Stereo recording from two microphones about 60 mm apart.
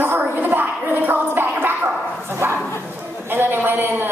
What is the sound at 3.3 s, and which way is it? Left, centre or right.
Speech, right.